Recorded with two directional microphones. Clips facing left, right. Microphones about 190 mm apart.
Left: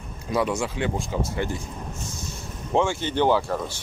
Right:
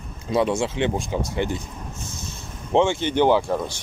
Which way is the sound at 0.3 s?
25° right (ahead or behind).